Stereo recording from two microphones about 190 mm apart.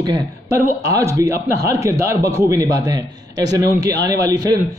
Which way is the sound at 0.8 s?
15° right (ahead or behind).